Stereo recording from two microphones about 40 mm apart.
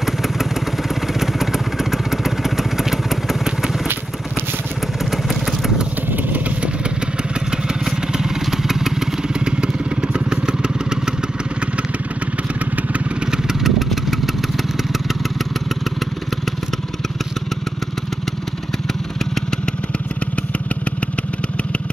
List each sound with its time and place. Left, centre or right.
0.0 s vehicle: centre
5.1 s vehicle: centre
7.5 s motorcycle: centre
9.3 s motorcycle: right
13.3 s motorcycle: centre
13.8 s vehicle: centre